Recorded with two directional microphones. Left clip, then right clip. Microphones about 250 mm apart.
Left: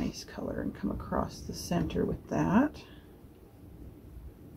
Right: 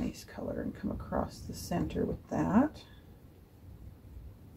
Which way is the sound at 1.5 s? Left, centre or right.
Centre.